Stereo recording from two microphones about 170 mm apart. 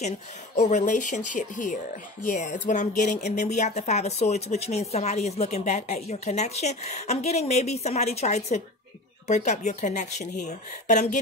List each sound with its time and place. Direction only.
0.6 s a woman's voice: 45° left (ahead or behind)